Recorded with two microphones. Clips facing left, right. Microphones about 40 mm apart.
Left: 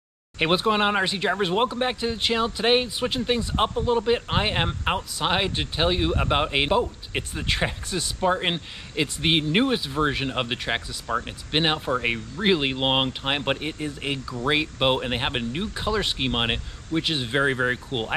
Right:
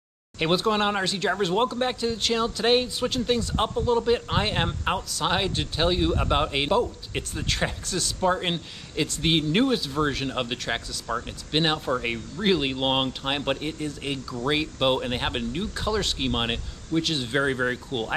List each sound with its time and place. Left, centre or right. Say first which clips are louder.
0.4 s speech: left 2 dB; centre